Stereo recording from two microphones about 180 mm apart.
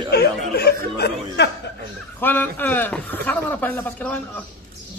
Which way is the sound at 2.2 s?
10° left (ahead or behind).